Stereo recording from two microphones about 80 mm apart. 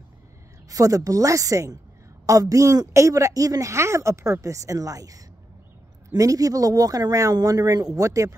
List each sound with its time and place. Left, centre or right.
0.7 s speech: right